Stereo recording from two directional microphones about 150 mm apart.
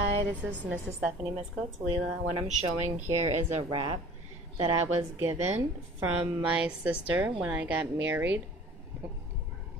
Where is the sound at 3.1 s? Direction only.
45° right (ahead or behind).